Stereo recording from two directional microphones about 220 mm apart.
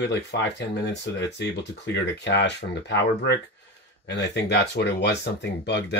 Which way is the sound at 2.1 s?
50° left (ahead or behind).